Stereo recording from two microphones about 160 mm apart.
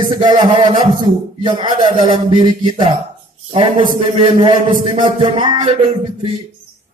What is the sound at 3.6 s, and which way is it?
A man's voice, 35° right (ahead or behind).